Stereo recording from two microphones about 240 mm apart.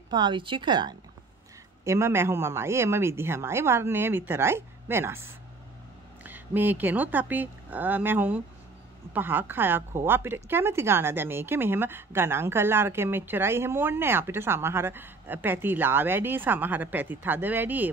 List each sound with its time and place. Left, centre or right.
0.1 s speech: centre